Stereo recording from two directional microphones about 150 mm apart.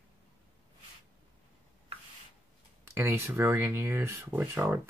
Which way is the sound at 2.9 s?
15° right (ahead or behind).